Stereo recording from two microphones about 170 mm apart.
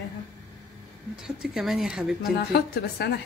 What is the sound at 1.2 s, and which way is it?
Speech, 5° right (ahead or behind).